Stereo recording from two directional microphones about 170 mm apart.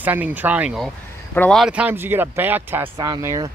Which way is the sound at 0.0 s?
10° right (ahead or behind).